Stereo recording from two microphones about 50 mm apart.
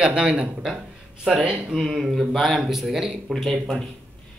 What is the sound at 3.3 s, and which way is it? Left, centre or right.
Speech, centre.